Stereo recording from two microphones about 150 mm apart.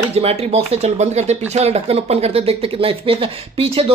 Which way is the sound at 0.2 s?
45° right (ahead or behind).